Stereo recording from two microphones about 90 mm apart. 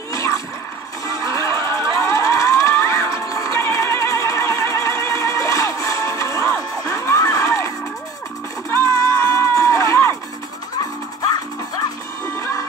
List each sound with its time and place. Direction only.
0.1 s a sound: 35° left (ahead or behind)
1.0 s music: 35° left (ahead or behind)
12.4 s music: 35° left (ahead or behind)